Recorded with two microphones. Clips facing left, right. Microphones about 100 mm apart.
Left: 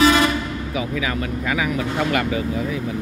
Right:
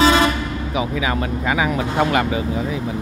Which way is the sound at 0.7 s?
25° right (ahead or behind).